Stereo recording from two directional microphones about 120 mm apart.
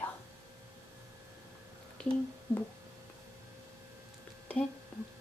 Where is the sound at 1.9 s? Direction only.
10° left (ahead or behind).